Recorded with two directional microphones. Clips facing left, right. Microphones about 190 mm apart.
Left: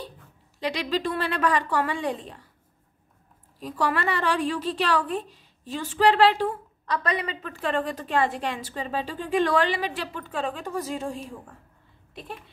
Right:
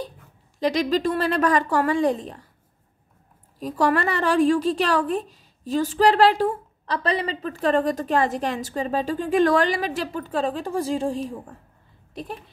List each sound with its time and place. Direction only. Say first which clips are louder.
0.6 s a woman's voice: right 6 dB; 45° right (ahead or behind)
3.5 s a woman's voice: right 5 dB; 45° right (ahead or behind)
12.1 s a sound: right 5 dB; 40° right (ahead or behind)